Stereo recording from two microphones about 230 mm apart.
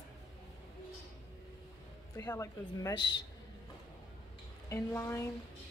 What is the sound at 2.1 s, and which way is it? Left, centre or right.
Speech, centre.